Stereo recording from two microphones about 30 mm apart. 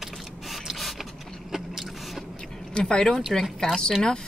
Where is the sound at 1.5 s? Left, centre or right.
Centre.